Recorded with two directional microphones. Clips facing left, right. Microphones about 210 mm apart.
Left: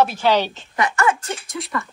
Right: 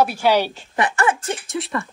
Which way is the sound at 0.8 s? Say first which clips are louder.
Even; 30° right (ahead or behind).